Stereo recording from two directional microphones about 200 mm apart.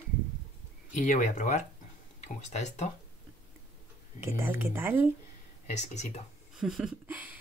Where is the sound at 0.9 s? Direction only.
40° left (ahead or behind).